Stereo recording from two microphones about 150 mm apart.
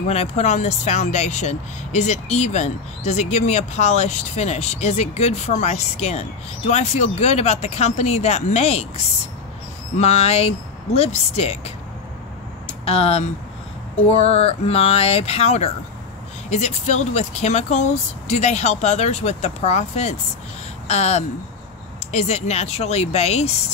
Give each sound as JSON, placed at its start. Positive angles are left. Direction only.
{"t": 0.1, "sound": "speech", "side_deg": 45}
{"t": 12.8, "sound": "speech", "side_deg": 40}